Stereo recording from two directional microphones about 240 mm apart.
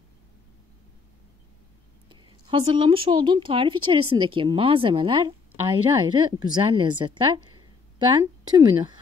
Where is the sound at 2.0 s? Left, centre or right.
Centre.